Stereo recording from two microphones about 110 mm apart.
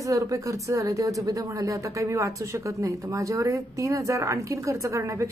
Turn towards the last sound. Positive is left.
turn(degrees=-25)  # may be behind; listen again after turning